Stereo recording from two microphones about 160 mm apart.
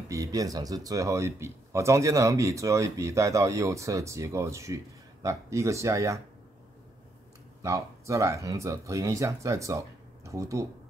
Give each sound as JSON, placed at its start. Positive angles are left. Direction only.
{"t": 0.1, "sound": "speech", "side_deg": -20}
{"t": 7.6, "sound": "speech", "side_deg": -20}